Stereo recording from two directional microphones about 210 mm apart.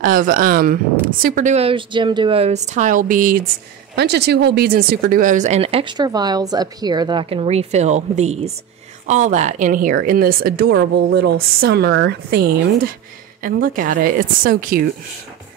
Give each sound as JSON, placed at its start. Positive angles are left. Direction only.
{"t": 0.0, "sound": "speech", "side_deg": -40}
{"t": 3.9, "sound": "a woman's voice", "side_deg": -50}